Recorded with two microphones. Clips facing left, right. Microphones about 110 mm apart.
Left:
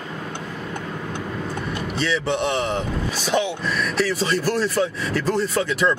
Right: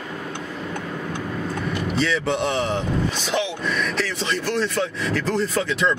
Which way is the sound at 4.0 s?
5° left (ahead or behind).